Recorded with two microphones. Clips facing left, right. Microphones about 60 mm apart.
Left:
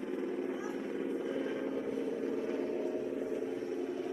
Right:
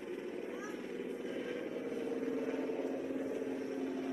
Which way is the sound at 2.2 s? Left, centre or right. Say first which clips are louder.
Left 2 dB; centre.